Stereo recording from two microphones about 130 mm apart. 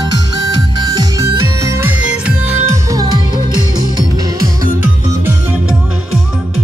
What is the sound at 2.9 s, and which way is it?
Music, 30° right (ahead or behind).